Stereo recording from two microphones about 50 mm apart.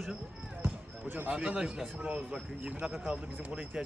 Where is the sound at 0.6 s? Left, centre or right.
Right.